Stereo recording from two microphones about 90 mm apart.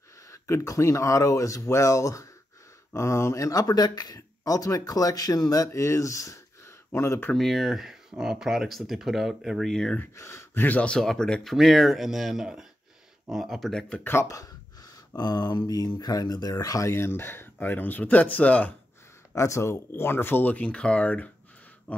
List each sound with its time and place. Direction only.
0.3 s speech: 35° left (ahead or behind)
7.3 s speech: centre (ahead or behind)
10.1 s speech: 35° left (ahead or behind)
10.6 s speech: 15° left (ahead or behind)
11.0 s speech: 5° left (ahead or behind)
14.2 s speech: 40° left (ahead or behind)
16.9 s speech: 25° left (ahead or behind)
19.3 s speech: 35° left (ahead or behind); by 21.3 s 15° left (ahead or behind)
21.9 s a sound: 15° left (ahead or behind)